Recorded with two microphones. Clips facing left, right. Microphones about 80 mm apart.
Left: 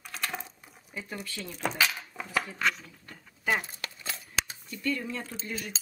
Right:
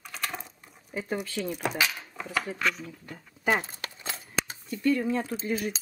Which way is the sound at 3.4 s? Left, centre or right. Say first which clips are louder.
Right 3 dB; right.